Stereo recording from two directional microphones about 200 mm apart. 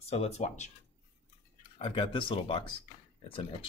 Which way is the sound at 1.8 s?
25° left (ahead or behind).